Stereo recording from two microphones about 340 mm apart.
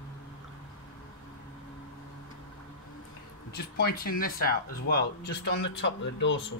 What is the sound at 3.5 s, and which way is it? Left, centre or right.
Speech, left.